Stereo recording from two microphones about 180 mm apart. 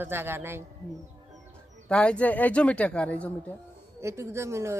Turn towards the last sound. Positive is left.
turn(degrees=-15)  # may be behind; listen again after turning